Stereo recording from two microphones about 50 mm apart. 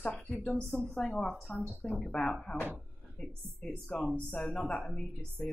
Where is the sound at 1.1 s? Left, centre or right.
Centre.